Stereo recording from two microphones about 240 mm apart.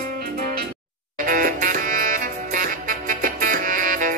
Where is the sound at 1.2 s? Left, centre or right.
Right.